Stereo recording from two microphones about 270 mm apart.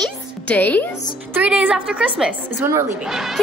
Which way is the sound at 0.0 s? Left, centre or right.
Centre.